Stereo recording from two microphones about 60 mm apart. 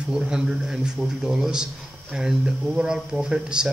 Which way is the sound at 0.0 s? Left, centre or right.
Centre.